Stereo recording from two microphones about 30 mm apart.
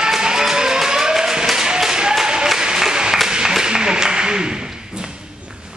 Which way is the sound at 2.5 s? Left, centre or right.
Right.